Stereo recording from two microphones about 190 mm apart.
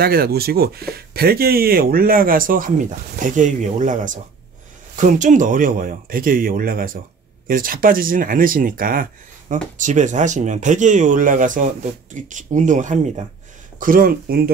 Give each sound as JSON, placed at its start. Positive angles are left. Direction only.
{"t": 0.0, "sound": "speech", "side_deg": -55}